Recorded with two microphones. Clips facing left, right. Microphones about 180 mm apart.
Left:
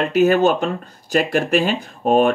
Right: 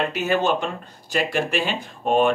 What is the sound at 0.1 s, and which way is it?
Speech, 45° left (ahead or behind).